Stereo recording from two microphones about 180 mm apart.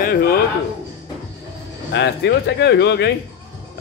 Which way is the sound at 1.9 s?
75° left (ahead or behind).